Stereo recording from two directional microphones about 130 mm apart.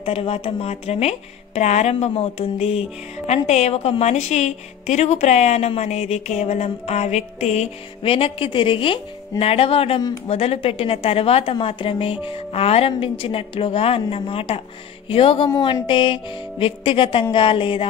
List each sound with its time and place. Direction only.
0.0 s a woman's voice: 50° left (ahead or behind)